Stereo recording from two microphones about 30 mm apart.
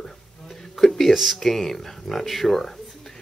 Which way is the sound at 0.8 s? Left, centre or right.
Centre.